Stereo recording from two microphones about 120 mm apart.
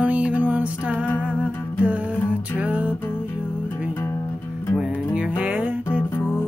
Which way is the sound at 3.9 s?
20° left (ahead or behind).